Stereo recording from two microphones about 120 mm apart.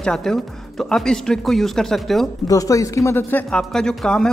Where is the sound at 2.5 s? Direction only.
30° left (ahead or behind).